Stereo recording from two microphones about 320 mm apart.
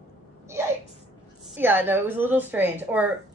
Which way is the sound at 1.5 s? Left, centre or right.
Centre.